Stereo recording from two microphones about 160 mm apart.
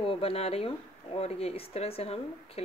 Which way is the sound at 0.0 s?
35° left (ahead or behind).